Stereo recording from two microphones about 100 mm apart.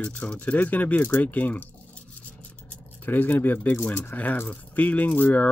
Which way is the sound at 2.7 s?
20° left (ahead or behind).